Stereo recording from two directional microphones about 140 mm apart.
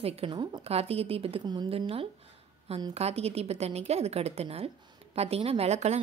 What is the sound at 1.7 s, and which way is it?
A woman's voice, 40° right (ahead or behind).